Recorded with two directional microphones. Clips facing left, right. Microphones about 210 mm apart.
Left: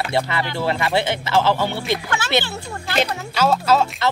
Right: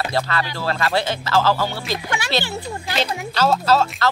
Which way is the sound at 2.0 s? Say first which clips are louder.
Left 2 dB; 15° right (ahead or behind).